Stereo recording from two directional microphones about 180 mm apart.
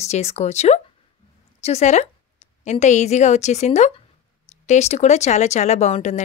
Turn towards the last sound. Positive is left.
turn(degrees=40)  # may be behind; listen again after turning